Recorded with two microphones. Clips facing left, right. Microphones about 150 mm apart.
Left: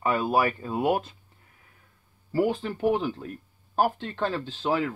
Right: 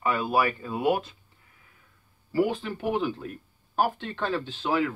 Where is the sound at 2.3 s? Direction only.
35° left (ahead or behind).